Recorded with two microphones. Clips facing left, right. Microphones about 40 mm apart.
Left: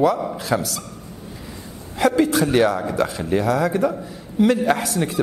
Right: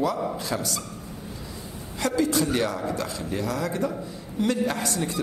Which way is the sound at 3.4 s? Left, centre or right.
Centre.